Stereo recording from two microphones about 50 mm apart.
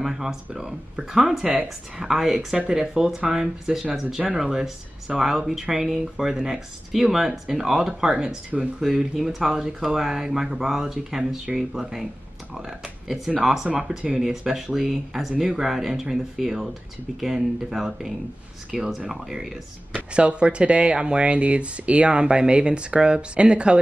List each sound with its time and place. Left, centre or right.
0.0 s a sound: centre
0.6 s speech: centre
19.9 s speech: right